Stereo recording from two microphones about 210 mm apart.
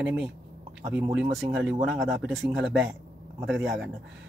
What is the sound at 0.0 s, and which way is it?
Speech, 5° right (ahead or behind).